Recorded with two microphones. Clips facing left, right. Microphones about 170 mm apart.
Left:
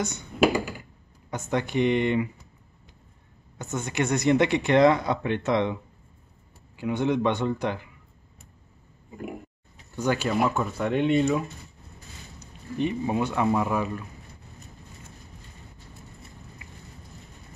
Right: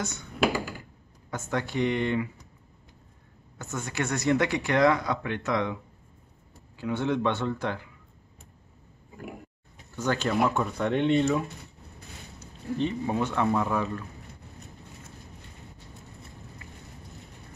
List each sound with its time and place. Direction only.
0.0 s computer keyboard: 20° left (ahead or behind)
1.3 s speech: 20° left (ahead or behind)
3.5 s speech: 20° left (ahead or behind)
6.8 s speech: 15° left (ahead or behind)
9.9 s speech: 10° left (ahead or behind)
12.4 s speech: 15° left (ahead or behind)